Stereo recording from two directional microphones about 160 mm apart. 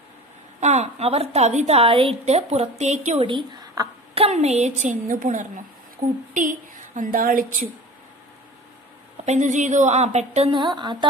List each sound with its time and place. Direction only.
0.6 s a woman's voice: 45° right (ahead or behind)
3.3 s a woman's voice: 30° right (ahead or behind)
4.1 s a woman's voice: 40° right (ahead or behind); by 7.4 s 60° right (ahead or behind)
9.2 s a woman's voice: 45° right (ahead or behind)
10.5 s speech: 30° right (ahead or behind)